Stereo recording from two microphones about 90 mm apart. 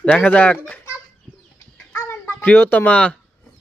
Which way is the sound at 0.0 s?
15° left (ahead or behind).